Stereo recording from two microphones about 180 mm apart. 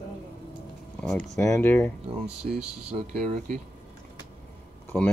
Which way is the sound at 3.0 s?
45° right (ahead or behind).